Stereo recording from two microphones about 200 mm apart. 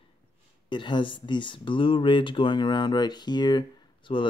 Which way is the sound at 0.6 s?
25° left (ahead or behind).